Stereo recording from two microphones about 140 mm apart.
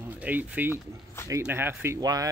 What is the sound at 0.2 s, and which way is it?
Speech, 10° right (ahead or behind).